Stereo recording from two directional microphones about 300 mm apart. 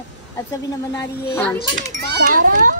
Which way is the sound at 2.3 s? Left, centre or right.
Right.